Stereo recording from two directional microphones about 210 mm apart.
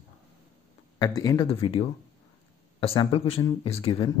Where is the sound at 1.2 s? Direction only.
20° left (ahead or behind).